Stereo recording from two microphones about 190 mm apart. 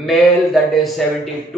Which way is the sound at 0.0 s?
Centre (ahead or behind).